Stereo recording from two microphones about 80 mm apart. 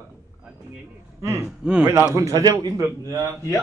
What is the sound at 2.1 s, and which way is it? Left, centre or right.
Speech, right.